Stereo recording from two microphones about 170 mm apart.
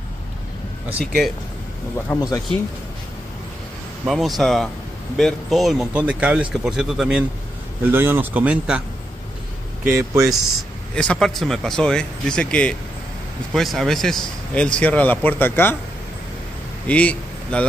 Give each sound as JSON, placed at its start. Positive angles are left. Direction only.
{"t": 2.1, "sound": "speech", "side_deg": 20}
{"t": 4.0, "sound": "speech", "side_deg": 0}
{"t": 9.8, "sound": "speech", "side_deg": -15}
{"t": 11.0, "sound": "speech", "side_deg": 5}
{"t": 16.8, "sound": "speech", "side_deg": 10}